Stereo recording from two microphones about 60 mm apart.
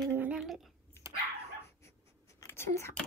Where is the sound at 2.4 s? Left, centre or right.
Left.